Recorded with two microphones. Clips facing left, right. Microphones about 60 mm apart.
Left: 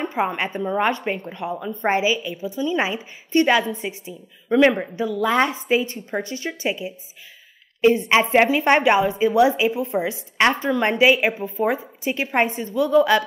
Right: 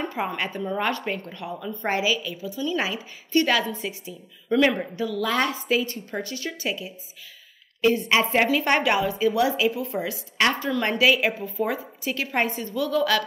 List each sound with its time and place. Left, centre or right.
0.0 s a woman's voice: left